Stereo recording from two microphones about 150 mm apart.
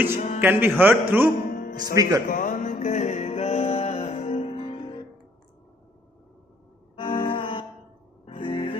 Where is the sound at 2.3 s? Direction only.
65° left (ahead or behind); by 5.0 s 35° left (ahead or behind).